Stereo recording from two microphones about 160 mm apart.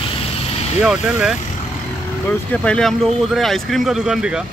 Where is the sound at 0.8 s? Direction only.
5° right (ahead or behind).